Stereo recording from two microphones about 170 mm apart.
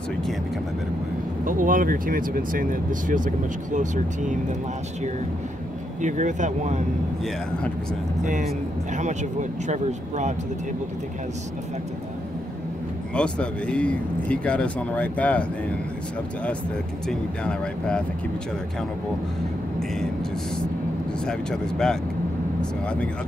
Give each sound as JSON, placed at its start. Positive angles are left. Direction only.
{"t": 1.4, "sound": "speech", "side_deg": -55}
{"t": 5.9, "sound": "speech", "side_deg": -45}
{"t": 8.2, "sound": "speech", "side_deg": -45}
{"t": 13.1, "sound": "speech", "side_deg": 5}
{"t": 17.1, "sound": "speech", "side_deg": 5}
{"t": 21.3, "sound": "speech", "side_deg": 5}